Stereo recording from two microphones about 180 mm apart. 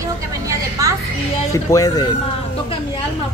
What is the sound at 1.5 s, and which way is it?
Speech, 20° left (ahead or behind).